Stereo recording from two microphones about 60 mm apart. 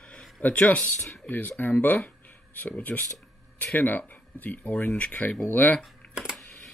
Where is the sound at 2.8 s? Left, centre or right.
Left.